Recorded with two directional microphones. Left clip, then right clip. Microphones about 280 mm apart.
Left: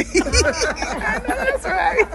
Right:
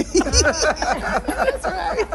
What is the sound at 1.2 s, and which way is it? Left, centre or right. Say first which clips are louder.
Speech: right 2 dB; right.